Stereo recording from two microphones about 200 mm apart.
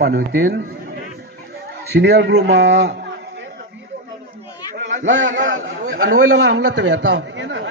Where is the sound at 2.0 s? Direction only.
60° right (ahead or behind).